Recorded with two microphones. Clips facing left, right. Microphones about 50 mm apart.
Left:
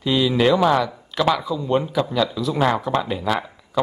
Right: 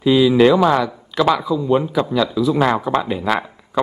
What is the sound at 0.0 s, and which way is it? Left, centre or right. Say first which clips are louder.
Speech: right 6 dB; centre.